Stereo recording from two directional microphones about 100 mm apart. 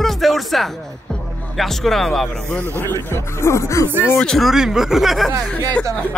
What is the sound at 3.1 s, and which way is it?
Speech, 25° left (ahead or behind).